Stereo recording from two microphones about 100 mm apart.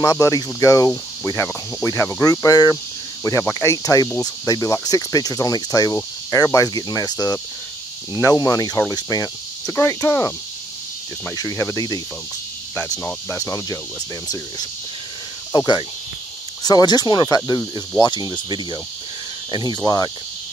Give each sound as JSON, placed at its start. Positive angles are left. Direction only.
{"t": 0.0, "sound": "cricket", "side_deg": 30}
{"t": 1.8, "sound": "speech", "side_deg": 25}
{"t": 2.2, "sound": "cricket", "side_deg": 35}
{"t": 9.7, "sound": "speech", "side_deg": 20}
{"t": 11.3, "sound": "speech", "side_deg": 30}
{"t": 13.4, "sound": "cricket", "side_deg": 35}